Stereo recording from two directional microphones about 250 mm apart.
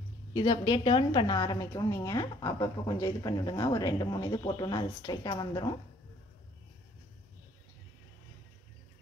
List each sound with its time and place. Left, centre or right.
0.3 s a woman's voice: centre